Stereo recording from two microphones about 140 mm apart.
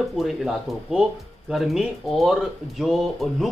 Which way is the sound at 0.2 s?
5° right (ahead or behind).